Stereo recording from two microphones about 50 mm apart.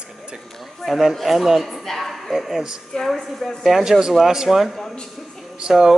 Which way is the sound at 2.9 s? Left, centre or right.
Centre.